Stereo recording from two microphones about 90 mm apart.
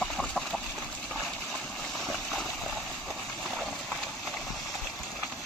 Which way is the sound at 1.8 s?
Centre (ahead or behind).